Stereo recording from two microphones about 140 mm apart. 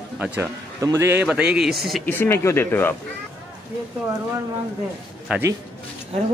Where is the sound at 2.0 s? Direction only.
15° left (ahead or behind).